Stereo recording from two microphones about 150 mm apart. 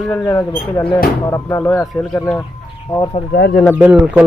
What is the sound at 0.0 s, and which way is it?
Speech, 15° left (ahead or behind).